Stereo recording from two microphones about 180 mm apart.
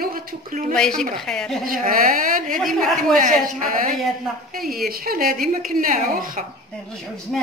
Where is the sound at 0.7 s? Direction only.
5° left (ahead or behind).